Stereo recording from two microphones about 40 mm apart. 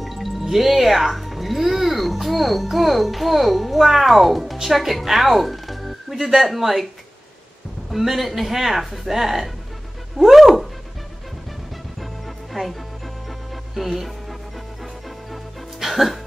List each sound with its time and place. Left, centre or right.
0.0 s speech: centre
7.9 s speech: centre
12.5 s music: centre
13.7 s speech: centre
15.0 s music: centre